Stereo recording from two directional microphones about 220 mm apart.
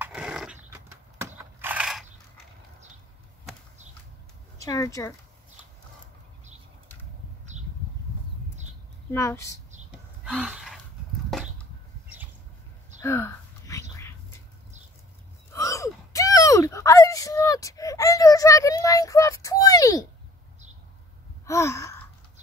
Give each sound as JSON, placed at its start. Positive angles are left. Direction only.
{"t": 0.0, "sound": "horse", "side_deg": -5}
{"t": 1.6, "sound": "a sound", "side_deg": -5}
{"t": 4.6, "sound": "speech", "side_deg": 15}
{"t": 9.1, "sound": "a woman's voice", "side_deg": 10}
{"t": 9.8, "sound": "gasp", "side_deg": -5}
{"t": 11.3, "sound": "a sound", "side_deg": 0}
{"t": 13.0, "sound": "a sound", "side_deg": 10}
{"t": 15.5, "sound": "gasp", "side_deg": 15}
{"t": 21.5, "sound": "gasp", "side_deg": 15}